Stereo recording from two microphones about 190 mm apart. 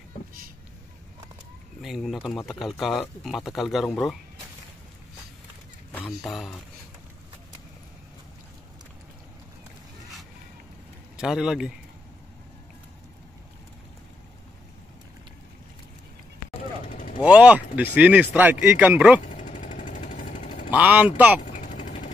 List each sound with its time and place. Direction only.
1.8 s speech: centre (ahead or behind)
5.9 s speech: 5° left (ahead or behind)
11.1 s speech: 5° right (ahead or behind)
16.8 s vehicle: 45° left (ahead or behind)
17.2 s speech: 5° right (ahead or behind)
19.2 s jackhammer: 40° left (ahead or behind)
20.7 s speech: 10° right (ahead or behind)
21.5 s vehicle: 40° left (ahead or behind)